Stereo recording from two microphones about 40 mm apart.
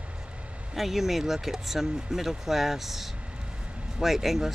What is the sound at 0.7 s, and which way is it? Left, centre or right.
Speech, centre.